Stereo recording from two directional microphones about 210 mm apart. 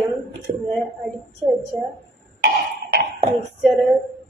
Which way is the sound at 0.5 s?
30° right (ahead or behind).